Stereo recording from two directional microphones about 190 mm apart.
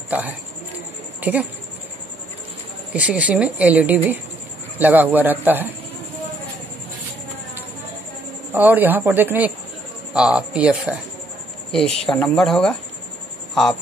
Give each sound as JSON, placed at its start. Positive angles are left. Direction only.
{"t": 1.2, "sound": "speech", "side_deg": -10}
{"t": 2.9, "sound": "a woman's voice", "side_deg": -5}
{"t": 8.5, "sound": "a woman's voice", "side_deg": -10}